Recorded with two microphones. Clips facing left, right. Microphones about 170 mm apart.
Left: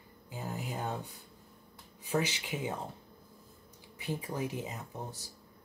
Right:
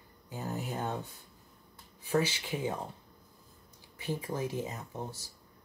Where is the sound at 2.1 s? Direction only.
20° left (ahead or behind).